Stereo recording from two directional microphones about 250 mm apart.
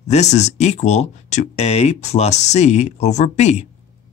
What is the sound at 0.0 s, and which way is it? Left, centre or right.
Speech, left.